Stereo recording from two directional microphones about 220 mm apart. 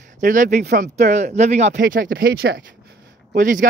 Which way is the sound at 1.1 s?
35° right (ahead or behind).